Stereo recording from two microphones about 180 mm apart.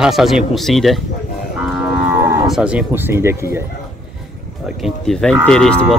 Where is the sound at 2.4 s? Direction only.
5° right (ahead or behind).